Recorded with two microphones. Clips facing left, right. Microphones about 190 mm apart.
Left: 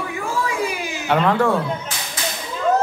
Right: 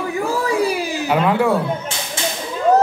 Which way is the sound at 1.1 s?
5° right (ahead or behind).